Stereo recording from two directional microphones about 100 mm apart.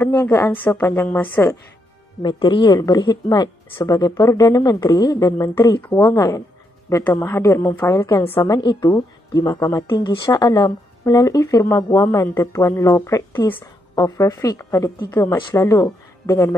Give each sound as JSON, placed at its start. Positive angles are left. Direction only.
{"t": 0.2, "sound": "a woman's voice", "side_deg": 25}
{"t": 2.2, "sound": "speech", "side_deg": 50}
{"t": 5.8, "sound": "a woman's voice", "side_deg": 20}
{"t": 6.1, "sound": "a woman's voice", "side_deg": 35}
{"t": 8.5, "sound": "a woman's voice", "side_deg": 45}
{"t": 9.8, "sound": "a woman's voice", "side_deg": 50}